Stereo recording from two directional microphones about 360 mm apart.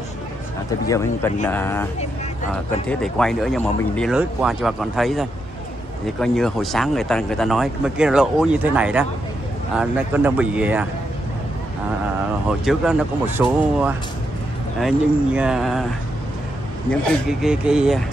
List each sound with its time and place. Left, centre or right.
0.8 s speech: centre
2.9 s speech: centre
12.4 s speech: centre
17.3 s speech: centre